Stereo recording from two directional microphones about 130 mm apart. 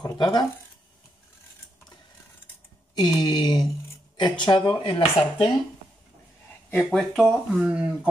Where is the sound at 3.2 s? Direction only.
30° left (ahead or behind).